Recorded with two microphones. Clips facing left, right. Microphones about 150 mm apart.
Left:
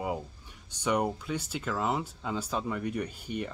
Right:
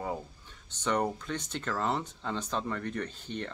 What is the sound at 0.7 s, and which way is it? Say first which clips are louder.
Speech: left 1 dB; 10° left (ahead or behind).